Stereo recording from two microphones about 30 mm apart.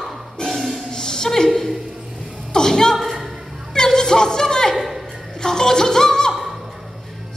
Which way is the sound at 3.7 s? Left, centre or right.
Left.